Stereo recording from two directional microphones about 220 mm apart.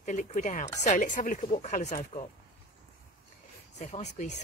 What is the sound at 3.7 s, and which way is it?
Speech, 30° left (ahead or behind).